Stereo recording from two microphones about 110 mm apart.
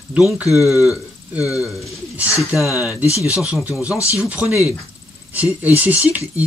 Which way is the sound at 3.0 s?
25° left (ahead or behind).